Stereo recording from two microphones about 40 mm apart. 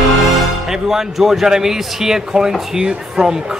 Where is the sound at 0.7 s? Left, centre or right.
Centre.